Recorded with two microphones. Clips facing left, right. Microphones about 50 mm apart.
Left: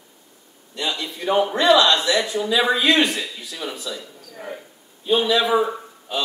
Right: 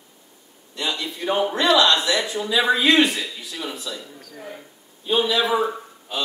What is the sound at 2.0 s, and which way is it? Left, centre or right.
Speech, centre.